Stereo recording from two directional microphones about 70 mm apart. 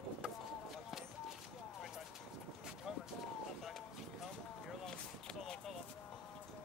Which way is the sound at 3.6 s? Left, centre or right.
Centre.